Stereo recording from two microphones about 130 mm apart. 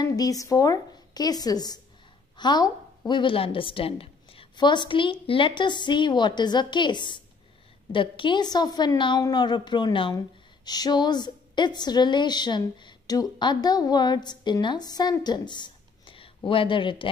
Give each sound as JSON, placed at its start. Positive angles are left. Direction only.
{"t": 0.0, "sound": "a woman's voice", "side_deg": 30}